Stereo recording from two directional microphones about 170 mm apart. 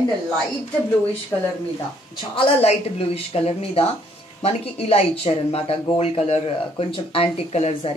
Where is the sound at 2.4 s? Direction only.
35° left (ahead or behind).